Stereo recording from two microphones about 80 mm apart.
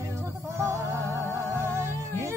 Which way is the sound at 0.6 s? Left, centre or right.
Right.